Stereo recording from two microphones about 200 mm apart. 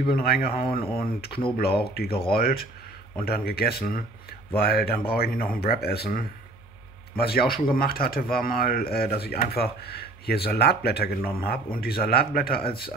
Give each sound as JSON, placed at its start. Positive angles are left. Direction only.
{"t": 0.0, "sound": "speech", "side_deg": 50}
{"t": 2.0, "sound": "speech", "side_deg": 30}
{"t": 2.3, "sound": "speech", "side_deg": 50}